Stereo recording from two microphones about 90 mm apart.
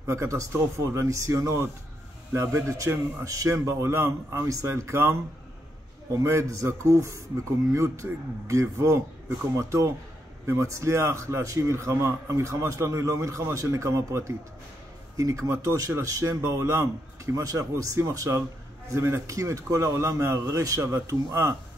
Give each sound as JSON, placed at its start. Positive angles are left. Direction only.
{"t": 0.0, "sound": "a man's voice", "side_deg": -35}